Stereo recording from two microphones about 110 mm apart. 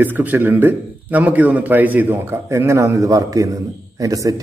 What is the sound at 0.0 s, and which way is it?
A man's voice, 15° right (ahead or behind).